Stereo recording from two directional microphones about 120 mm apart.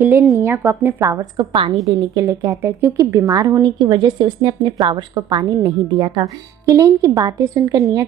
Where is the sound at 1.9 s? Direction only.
30° right (ahead or behind).